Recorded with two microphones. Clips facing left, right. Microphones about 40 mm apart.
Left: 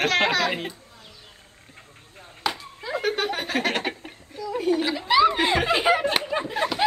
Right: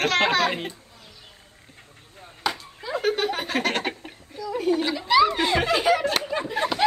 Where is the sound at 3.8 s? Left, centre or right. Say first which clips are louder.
Even; centre.